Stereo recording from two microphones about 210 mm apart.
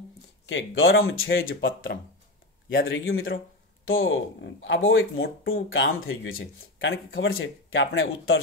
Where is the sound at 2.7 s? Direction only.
65° left (ahead or behind).